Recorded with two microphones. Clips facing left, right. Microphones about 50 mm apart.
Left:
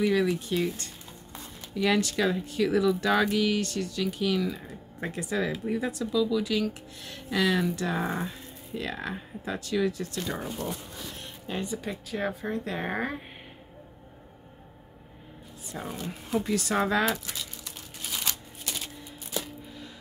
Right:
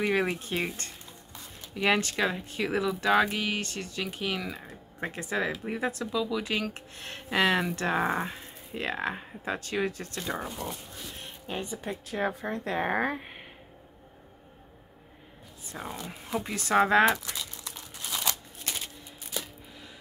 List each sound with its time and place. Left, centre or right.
0.0 s speech: right
10.2 s speech: right
11.1 s a sound: centre
12.2 s speech: right
15.8 s speech: centre
16.3 s speech: right
16.6 s speech: right